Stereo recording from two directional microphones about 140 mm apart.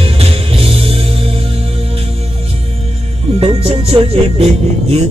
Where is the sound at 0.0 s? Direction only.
45° right (ahead or behind).